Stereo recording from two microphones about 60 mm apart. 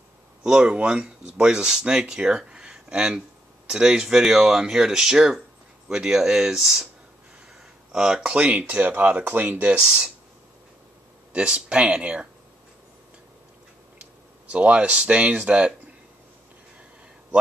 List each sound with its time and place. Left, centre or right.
0.4 s speech: centre
7.9 s speech: centre
11.3 s speech: centre
14.5 s speech: centre